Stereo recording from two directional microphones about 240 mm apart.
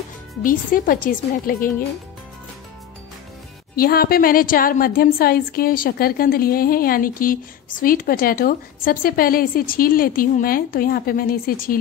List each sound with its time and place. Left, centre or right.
0.4 s a woman's voice: left
3.7 s a woman's voice: left